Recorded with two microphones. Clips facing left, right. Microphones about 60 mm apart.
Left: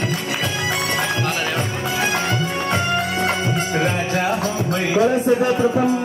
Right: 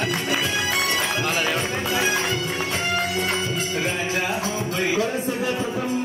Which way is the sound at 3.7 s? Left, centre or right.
Left.